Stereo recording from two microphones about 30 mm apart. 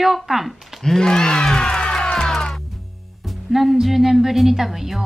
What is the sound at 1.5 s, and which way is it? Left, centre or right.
Music, left.